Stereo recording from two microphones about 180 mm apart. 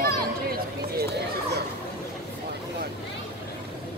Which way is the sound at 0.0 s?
55° right (ahead or behind).